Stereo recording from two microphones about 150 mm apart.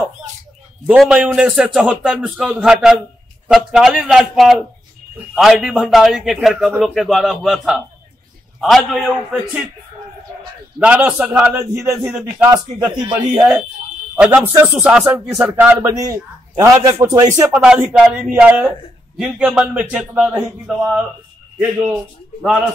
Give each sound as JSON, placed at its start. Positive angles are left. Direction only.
{"t": 0.8, "sound": "speech", "side_deg": -5}
{"t": 10.8, "sound": "a man's voice", "side_deg": -10}
{"t": 12.1, "sound": "speech", "side_deg": -5}
{"t": 12.4, "sound": "a man's voice", "side_deg": -25}
{"t": 13.1, "sound": "a man's voice", "side_deg": -10}
{"t": 15.9, "sound": "a man's voice", "side_deg": -25}
{"t": 17.6, "sound": "a man's voice", "side_deg": -5}